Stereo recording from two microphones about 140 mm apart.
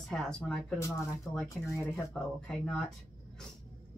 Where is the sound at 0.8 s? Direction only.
20° left (ahead or behind).